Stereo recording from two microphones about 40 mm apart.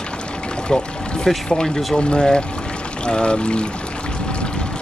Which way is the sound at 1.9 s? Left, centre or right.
Left.